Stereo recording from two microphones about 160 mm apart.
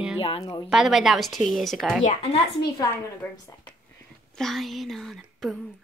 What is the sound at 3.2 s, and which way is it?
A woman's voice, 10° left (ahead or behind).